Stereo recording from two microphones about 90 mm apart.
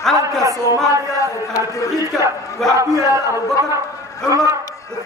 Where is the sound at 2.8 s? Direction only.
35° right (ahead or behind).